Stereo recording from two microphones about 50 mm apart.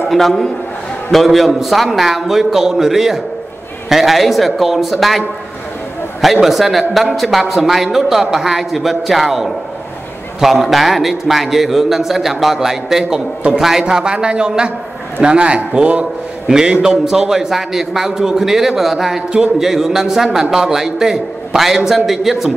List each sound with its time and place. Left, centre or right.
0.1 s a man's voice: centre
6.4 s a man's voice: centre